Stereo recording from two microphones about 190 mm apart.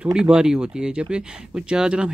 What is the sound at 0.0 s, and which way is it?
Speech, 5° right (ahead or behind).